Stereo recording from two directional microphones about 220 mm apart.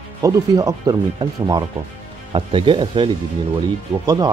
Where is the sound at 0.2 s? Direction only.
15° right (ahead or behind).